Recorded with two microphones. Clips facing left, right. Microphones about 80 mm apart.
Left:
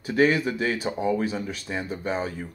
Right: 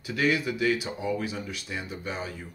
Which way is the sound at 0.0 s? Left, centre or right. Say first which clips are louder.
Left 5 dB; left.